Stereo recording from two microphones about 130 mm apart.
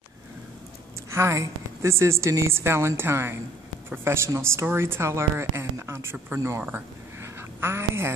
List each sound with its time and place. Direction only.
1.1 s speech: 20° right (ahead or behind)
7.6 s speech: 20° right (ahead or behind)